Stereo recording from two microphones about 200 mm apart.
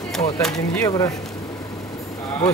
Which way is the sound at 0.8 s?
15° left (ahead or behind).